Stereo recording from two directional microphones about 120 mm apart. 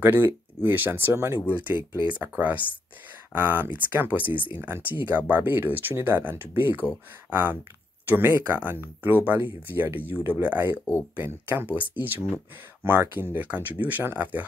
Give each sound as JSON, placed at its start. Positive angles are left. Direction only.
{"t": 0.0, "sound": "speech", "side_deg": -15}